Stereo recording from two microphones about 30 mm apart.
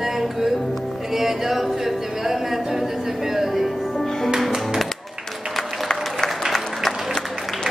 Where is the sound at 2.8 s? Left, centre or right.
Centre.